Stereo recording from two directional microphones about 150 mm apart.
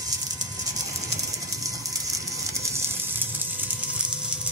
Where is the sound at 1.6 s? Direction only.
20° right (ahead or behind).